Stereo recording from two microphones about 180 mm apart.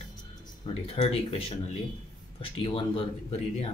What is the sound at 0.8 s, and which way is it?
Speech, 35° left (ahead or behind).